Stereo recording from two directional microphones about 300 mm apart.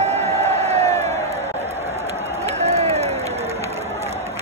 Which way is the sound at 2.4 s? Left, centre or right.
Right.